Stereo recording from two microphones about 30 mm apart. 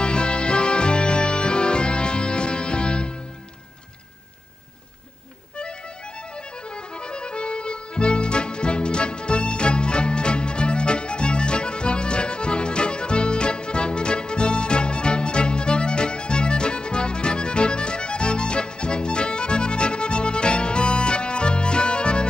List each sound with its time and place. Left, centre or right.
0.0 s music: left
6.7 s accordion: left